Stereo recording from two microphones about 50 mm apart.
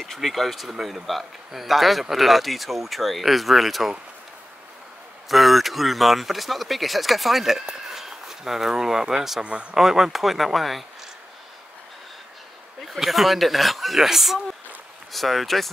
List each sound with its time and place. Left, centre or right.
0.0 s speech: centre
5.3 s speech: centre
9.4 s a man's voice: right
9.8 s speech: centre
12.8 s speech: centre